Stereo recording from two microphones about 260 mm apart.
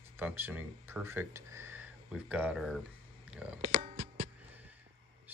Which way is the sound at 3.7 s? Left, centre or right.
Right.